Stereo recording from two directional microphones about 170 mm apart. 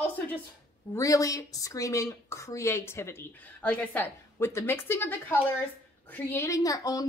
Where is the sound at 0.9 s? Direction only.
20° left (ahead or behind).